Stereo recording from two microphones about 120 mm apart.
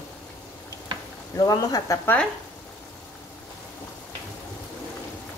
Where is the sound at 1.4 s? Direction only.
35° left (ahead or behind).